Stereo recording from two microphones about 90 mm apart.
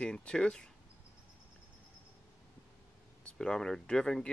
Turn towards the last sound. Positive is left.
turn(degrees=5)  # may be behind; listen again after turning